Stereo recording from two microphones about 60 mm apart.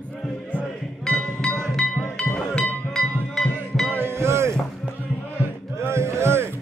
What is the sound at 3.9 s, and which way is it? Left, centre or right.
Music, right.